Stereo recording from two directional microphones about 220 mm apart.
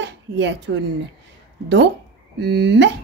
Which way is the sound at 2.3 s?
50° right (ahead or behind).